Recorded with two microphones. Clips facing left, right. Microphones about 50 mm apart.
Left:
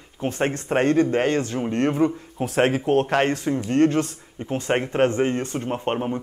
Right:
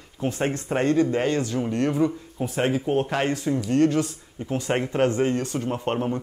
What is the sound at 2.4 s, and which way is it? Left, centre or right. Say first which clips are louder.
Speech: left 3 dB; left.